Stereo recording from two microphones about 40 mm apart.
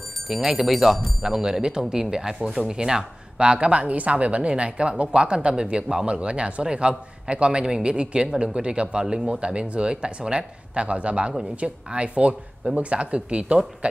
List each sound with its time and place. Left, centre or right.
0.3 s speech: centre; by 13.6 s right